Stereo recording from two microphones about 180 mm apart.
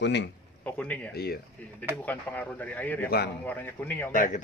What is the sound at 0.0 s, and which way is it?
Speech, 75° left (ahead or behind).